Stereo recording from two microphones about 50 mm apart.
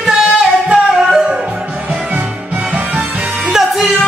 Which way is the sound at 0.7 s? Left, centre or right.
Centre.